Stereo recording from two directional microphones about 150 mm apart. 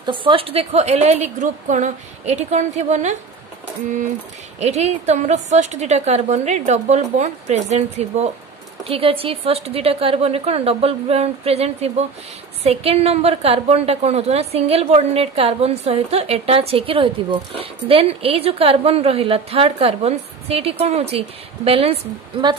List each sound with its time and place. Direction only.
0.0 s a woman's voice: 35° right (ahead or behind); by 3.2 s 50° right (ahead or behind)
4.6 s a woman's voice: 45° right (ahead or behind)